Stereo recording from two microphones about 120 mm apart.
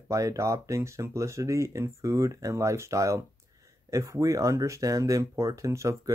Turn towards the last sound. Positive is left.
turn(degrees=-25)  # may be behind; listen again after turning